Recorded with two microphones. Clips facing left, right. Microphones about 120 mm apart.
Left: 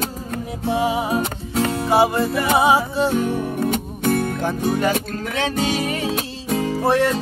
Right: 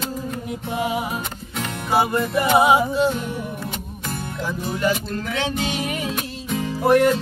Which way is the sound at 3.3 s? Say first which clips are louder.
Left 8 dB; 60° left (ahead or behind).